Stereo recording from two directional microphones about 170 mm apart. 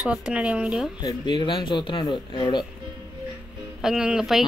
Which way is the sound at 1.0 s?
25° left (ahead or behind).